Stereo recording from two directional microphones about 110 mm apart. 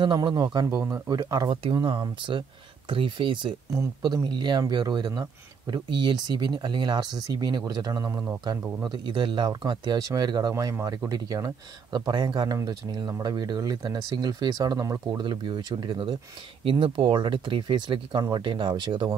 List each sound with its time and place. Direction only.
0.0 s speech: 45° right (ahead or behind)
0.8 s speech: 25° right (ahead or behind)
1.1 s speech: 35° right (ahead or behind)
1.5 s speech: 50° right (ahead or behind); by 8.4 s 25° right (ahead or behind)
8.8 s speech: 45° right (ahead or behind)
10.5 s speech: 30° right (ahead or behind)
15.1 s speech: 45° right (ahead or behind)